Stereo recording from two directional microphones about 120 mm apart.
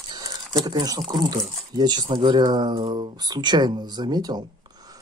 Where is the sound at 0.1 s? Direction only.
35° right (ahead or behind).